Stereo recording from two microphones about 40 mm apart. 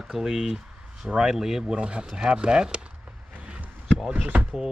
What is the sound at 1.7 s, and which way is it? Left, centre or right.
Speech, right.